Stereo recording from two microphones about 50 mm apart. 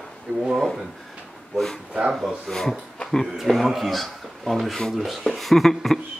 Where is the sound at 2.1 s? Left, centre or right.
Centre.